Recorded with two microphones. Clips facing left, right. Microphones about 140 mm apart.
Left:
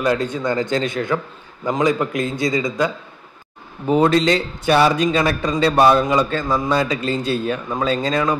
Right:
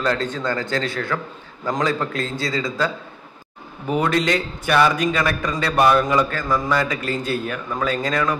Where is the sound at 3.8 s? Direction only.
30° left (ahead or behind).